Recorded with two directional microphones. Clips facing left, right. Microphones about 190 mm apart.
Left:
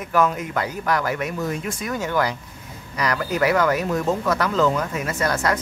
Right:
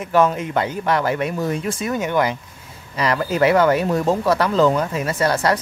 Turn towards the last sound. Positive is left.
turn(degrees=-30)  # may be behind; listen again after turning